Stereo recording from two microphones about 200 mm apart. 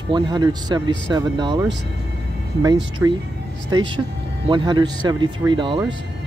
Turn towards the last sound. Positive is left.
turn(degrees=-25)  # may be behind; listen again after turning